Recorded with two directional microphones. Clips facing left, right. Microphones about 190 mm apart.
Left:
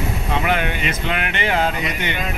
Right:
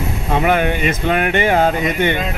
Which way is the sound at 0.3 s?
50° right (ahead or behind).